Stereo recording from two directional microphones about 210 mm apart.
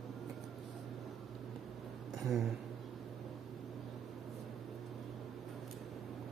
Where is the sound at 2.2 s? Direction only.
Centre (ahead or behind).